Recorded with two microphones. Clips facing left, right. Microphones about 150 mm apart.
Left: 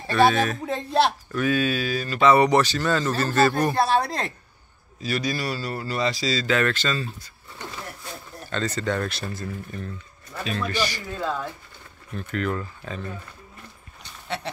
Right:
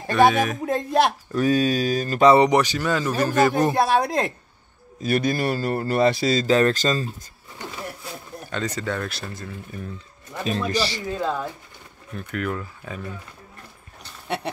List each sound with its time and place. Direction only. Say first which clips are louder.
0.1 s speech: right 2 dB; 15° right (ahead or behind)
1.3 s speech: right 3 dB; 35° right (ahead or behind)
2.3 s speech: right 2 dB; 20° right (ahead or behind)
5.0 s a man's voice: right 5 dB; 50° right (ahead or behind)
6.4 s speech: right 5 dB; 35° right (ahead or behind)
8.5 s speech: left 1 dB; 10° right (ahead or behind)
8.9 s speech: left 2 dB; centre (ahead or behind)
9.7 s speech: even; 10° right (ahead or behind)
10.4 s speech: right 3 dB; 35° right (ahead or behind)
11.0 s speech: right 3 dB; 20° right (ahead or behind)